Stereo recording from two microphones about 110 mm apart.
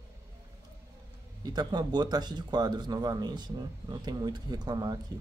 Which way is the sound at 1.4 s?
40° right (ahead or behind).